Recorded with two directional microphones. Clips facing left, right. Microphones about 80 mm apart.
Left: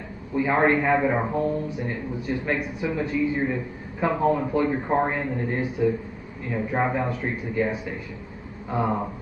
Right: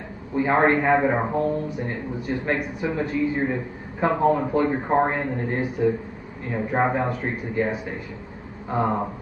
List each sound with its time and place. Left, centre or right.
0.3 s a man's voice: right